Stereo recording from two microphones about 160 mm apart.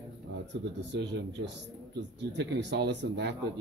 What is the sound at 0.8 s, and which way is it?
Speech, 90° right.